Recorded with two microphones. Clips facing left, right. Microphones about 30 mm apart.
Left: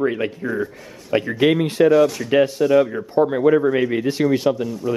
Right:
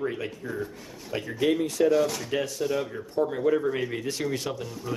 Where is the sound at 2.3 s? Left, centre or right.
Left.